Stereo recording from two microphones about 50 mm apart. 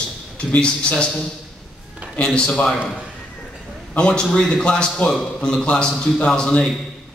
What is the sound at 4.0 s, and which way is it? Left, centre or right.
A man's voice, centre.